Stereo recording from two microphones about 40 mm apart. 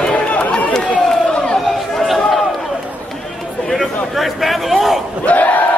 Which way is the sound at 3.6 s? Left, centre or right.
Centre.